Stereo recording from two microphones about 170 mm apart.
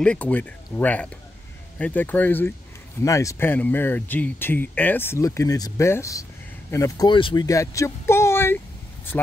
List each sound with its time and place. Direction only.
0.0 s speech: 10° left (ahead or behind)